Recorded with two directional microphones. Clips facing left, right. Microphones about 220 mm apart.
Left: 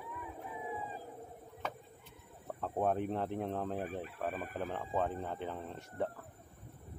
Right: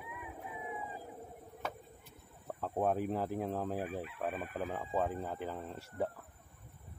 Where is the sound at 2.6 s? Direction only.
5° right (ahead or behind).